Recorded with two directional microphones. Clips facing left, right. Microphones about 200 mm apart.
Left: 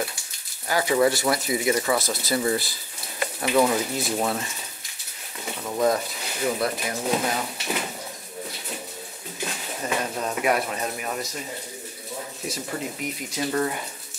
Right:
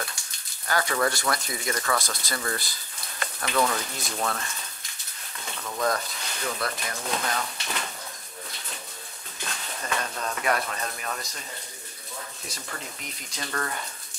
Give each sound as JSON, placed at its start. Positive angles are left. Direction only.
{"t": 0.7, "sound": "speech", "side_deg": 5}
{"t": 4.3, "sound": "a sound", "side_deg": 5}
{"t": 5.6, "sound": "speech", "side_deg": 25}
{"t": 5.9, "sound": "speech", "side_deg": 5}
{"t": 9.4, "sound": "speech", "side_deg": 10}
{"t": 12.4, "sound": "speech", "side_deg": 10}